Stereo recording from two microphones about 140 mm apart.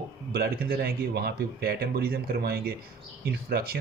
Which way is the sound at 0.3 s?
90° right.